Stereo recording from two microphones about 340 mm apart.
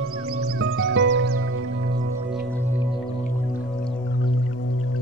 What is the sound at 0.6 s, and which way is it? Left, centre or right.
Music, right.